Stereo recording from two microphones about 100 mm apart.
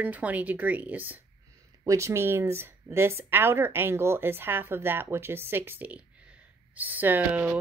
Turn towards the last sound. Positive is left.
turn(degrees=-20)  # may be behind; listen again after turning